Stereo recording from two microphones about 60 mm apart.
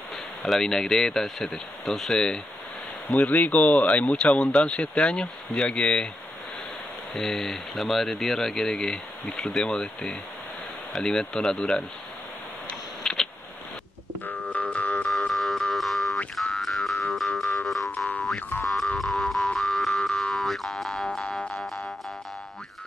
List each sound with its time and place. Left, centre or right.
0.4 s speech: centre
3.2 s speech: left
7.2 s speech: centre
13.0 s a sound: centre
14.2 s music: left
15.0 s music: centre